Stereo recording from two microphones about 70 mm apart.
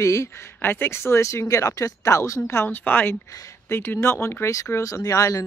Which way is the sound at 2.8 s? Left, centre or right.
Left.